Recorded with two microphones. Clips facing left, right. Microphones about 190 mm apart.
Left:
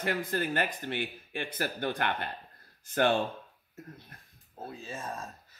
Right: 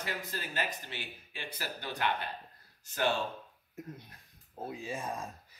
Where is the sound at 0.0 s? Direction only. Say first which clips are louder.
Left 8 dB; 55° left (ahead or behind).